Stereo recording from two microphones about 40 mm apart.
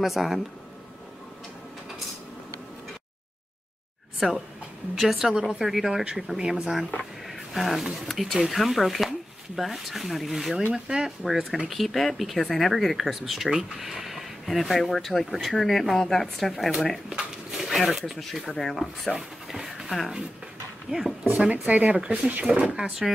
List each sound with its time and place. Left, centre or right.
0.0 s speech: centre
4.2 s speech: centre
7.0 s speech: centre
10.7 s speech: centre
11.1 s speech: centre
17.1 s speech: centre
18.5 s speech: centre
19.1 s a sound: centre
20.9 s speech: centre
21.4 s speech: right
21.9 s speech: centre